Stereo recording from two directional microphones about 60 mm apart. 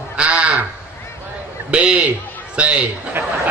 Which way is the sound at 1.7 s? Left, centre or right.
Centre.